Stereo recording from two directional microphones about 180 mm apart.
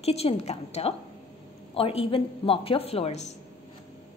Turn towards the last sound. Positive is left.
turn(degrees=35)  # may be behind; listen again after turning